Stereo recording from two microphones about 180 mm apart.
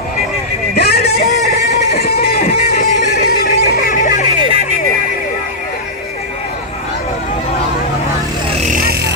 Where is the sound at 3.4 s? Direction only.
60° left (ahead or behind).